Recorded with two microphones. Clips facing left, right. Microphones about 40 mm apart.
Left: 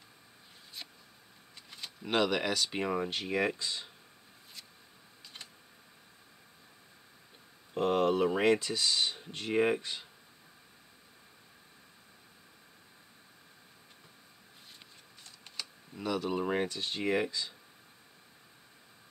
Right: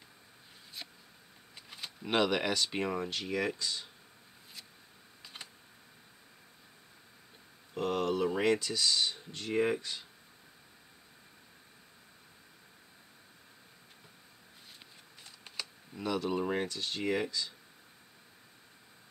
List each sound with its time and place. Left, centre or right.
0.8 s a sound: centre
1.7 s speech: centre
3.1 s speech: centre
5.2 s computer keyboard: centre
7.7 s speech: left
15.2 s a sound: centre
15.6 s speech: centre
16.6 s speech: centre